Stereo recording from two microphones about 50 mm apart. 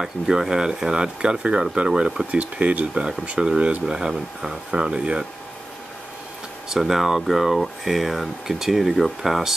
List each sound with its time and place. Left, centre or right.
0.0 s speech: centre
2.3 s speech: right
6.7 s speech: centre